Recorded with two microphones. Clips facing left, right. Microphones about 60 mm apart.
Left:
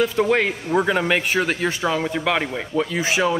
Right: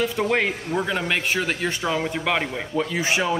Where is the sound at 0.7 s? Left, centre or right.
Centre.